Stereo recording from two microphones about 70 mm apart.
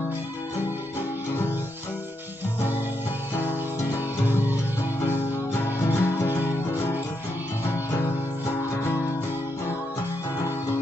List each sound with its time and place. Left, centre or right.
4.3 s music: right
5.1 s music: left